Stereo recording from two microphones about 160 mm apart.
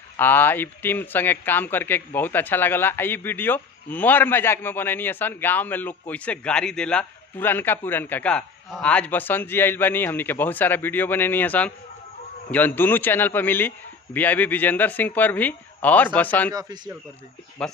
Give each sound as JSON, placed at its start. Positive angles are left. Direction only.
{"t": 0.2, "sound": "a man's voice", "side_deg": 10}
{"t": 16.5, "sound": "speech", "side_deg": -25}
{"t": 17.6, "sound": "speech", "side_deg": 5}